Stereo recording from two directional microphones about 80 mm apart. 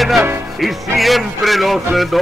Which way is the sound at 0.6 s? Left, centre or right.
Centre.